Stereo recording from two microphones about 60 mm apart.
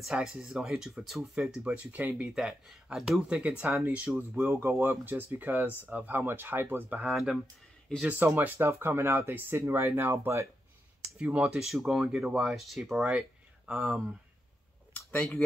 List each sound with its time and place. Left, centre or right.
0.0 s speech: centre
1.3 s speech: centre
2.3 s speech: centre
3.3 s speech: centre; by 6.9 s right
6.9 s speech: right
11.2 s speech: right
11.6 s speech: centre
15.0 s speech: centre